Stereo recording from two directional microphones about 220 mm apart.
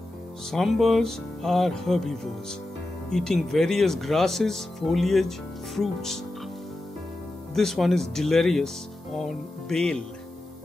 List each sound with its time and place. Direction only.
0.5 s speech: centre (ahead or behind)
7.5 s speech: centre (ahead or behind)